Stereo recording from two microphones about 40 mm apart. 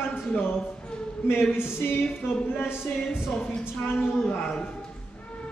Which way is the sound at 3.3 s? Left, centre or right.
Left.